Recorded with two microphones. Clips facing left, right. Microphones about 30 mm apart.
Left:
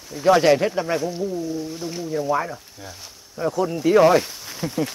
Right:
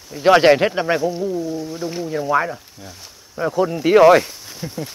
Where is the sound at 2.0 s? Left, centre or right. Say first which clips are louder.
Right 3 dB; right.